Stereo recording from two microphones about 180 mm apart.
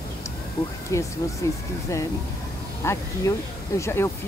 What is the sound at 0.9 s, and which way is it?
Speech, 15° left (ahead or behind).